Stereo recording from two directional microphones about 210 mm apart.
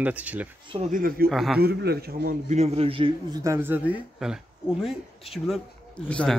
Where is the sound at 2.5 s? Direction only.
30° right (ahead or behind).